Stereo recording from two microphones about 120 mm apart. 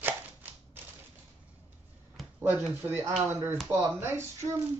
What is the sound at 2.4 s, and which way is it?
Speech, 15° right (ahead or behind).